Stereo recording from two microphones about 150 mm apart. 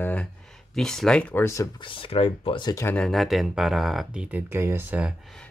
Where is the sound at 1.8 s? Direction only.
40° left (ahead or behind).